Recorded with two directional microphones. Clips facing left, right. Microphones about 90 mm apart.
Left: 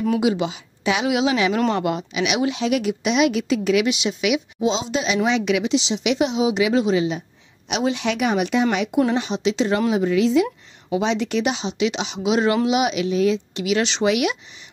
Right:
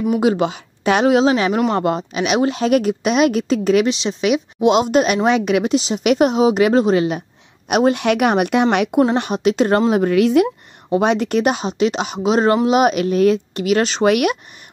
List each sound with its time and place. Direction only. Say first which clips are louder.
0.2 s a woman's voice: right 4 dB; 50° right (ahead or behind); by 4.4 s 35° right (ahead or behind)
4.6 s a woman's voice: right 8 dB; 60° right (ahead or behind)